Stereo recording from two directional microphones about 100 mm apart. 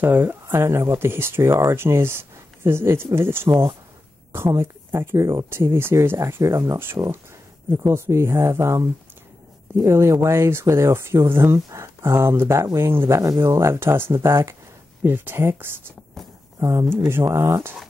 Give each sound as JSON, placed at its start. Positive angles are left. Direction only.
{"t": 0.0, "sound": "speech", "side_deg": -20}
{"t": 16.2, "sound": "a sound", "side_deg": 5}
{"t": 16.5, "sound": "speech", "side_deg": -25}